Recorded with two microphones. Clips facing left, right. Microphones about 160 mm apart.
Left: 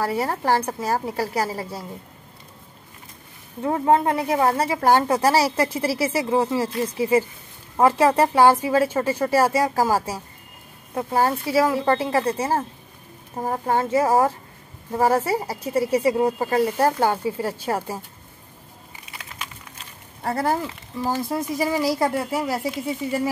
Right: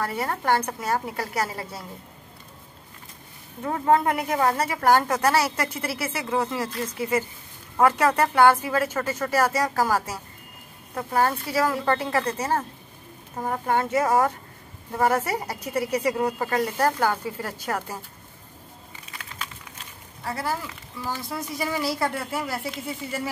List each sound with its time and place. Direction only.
0.0 s a woman's voice: 30° left (ahead or behind)
3.6 s a woman's voice: 25° left (ahead or behind)
20.2 s speech: 55° left (ahead or behind)
21.0 s a woman's voice: 45° left (ahead or behind)